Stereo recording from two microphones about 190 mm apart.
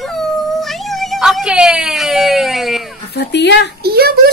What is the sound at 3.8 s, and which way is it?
Speech, 55° right (ahead or behind).